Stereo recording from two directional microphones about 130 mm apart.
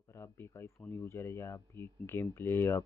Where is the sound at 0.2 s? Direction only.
20° left (ahead or behind).